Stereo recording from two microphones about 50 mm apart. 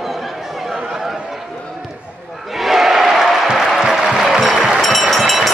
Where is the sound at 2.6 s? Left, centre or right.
Centre.